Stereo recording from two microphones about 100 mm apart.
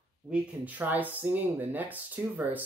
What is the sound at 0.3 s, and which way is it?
Speech, 15° right (ahead or behind).